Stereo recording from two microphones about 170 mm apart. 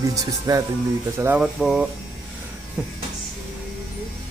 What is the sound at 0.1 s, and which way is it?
Speech, 20° right (ahead or behind).